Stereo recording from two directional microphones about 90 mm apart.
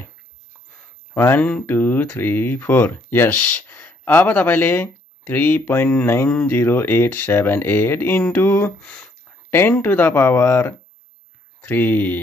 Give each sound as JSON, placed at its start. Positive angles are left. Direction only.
{"t": 1.1, "sound": "speech", "side_deg": 20}